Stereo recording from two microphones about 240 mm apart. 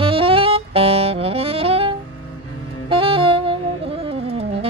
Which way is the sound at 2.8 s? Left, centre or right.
Right.